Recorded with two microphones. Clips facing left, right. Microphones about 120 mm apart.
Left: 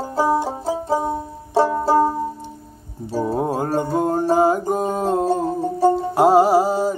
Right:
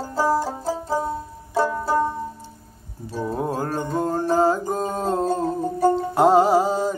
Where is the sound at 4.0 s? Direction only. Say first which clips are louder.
Left 1 dB; 15° left (ahead or behind).